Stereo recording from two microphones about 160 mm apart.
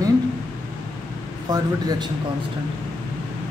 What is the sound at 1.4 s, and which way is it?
Speech, 25° right (ahead or behind).